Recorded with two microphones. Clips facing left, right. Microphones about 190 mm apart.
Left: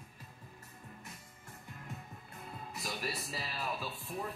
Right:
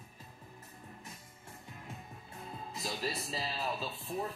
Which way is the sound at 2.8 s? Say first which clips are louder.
Right 2 dB; 25° right (ahead or behind).